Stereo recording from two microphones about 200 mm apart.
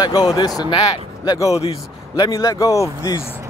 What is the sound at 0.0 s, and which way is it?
A man's voice, 20° left (ahead or behind).